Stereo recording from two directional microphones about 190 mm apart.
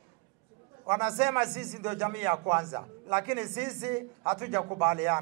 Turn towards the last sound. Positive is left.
turn(degrees=-15)  # may be behind; listen again after turning